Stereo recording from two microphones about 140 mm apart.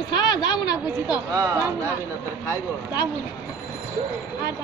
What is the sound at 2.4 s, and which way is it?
Speech, 25° left (ahead or behind).